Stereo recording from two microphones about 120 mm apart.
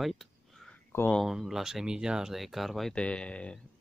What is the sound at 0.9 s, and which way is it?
Speech, 15° left (ahead or behind).